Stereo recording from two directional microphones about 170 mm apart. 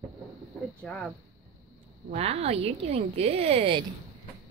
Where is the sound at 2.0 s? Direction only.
35° right (ahead or behind).